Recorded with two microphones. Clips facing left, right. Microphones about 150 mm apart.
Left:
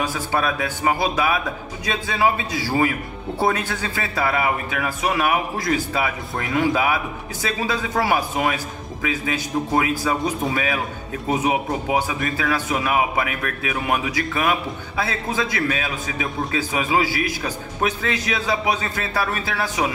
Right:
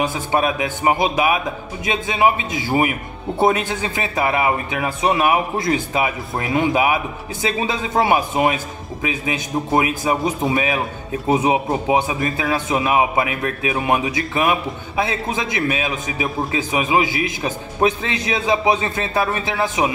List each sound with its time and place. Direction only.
0.0 s a man's voice: 20° right (ahead or behind)